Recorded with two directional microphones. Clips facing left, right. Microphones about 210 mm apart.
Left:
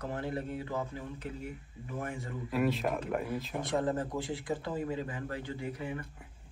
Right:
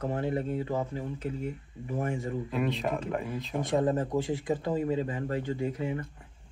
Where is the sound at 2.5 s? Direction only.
5° left (ahead or behind).